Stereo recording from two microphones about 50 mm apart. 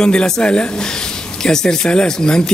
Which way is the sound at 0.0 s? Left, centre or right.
Centre.